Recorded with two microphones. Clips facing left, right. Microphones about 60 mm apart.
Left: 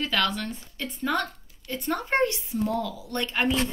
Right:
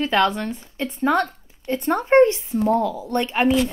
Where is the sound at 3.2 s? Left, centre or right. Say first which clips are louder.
Right 6 dB; right.